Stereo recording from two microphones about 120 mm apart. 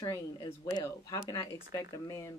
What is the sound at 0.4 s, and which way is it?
Speech, 35° left (ahead or behind).